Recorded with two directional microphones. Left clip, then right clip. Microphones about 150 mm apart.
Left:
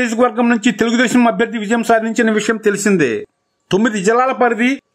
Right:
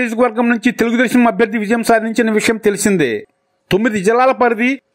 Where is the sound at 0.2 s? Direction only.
30° right (ahead or behind).